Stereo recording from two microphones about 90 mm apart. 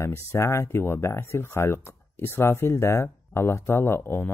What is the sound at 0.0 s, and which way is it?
Speech, 30° left (ahead or behind).